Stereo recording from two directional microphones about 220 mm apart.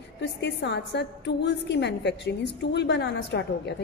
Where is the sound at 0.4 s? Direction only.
50° left (ahead or behind).